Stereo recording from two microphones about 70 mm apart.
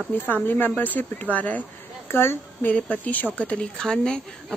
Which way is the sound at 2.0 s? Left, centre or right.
Left.